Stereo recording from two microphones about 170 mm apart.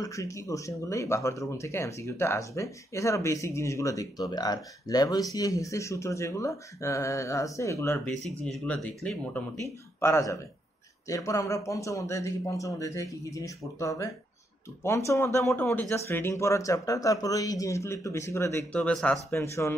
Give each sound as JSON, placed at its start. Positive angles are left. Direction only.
{"t": 0.0, "sound": "speech", "side_deg": 20}
{"t": 8.1, "sound": "speech", "side_deg": 0}